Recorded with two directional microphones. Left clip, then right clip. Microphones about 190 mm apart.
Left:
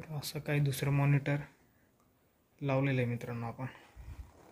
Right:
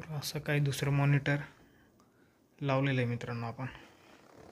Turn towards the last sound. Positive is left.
turn(degrees=0)  # may be behind; listen again after turning